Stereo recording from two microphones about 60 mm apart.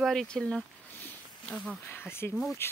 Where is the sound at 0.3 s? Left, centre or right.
Centre.